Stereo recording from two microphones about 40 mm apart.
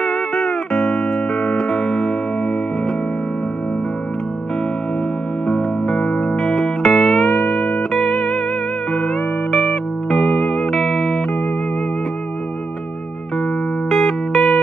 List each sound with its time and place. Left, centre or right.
0.0 s music: centre
0.8 s music: left
1.7 s music: centre
5.5 s music: left
6.8 s music: centre
7.2 s music: left
9.5 s music: centre
13.8 s music: centre